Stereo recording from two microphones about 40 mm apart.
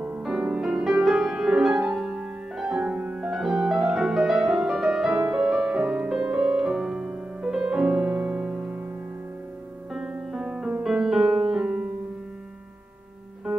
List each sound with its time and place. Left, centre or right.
0.2 s music: centre
1.7 s music: right
2.8 s music: right
3.2 s music: centre; by 6.5 s right
6.5 s music: centre
7.6 s music: right
10.4 s music: right
10.9 s piano: centre
11.2 s music: centre
11.6 s music: right